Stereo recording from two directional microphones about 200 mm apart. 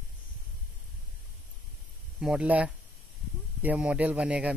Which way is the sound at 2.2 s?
5° right (ahead or behind).